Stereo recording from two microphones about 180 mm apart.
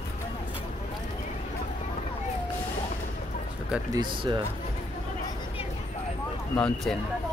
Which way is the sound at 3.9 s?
25° right (ahead or behind).